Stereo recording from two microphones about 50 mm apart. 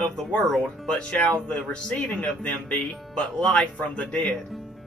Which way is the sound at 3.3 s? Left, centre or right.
Centre.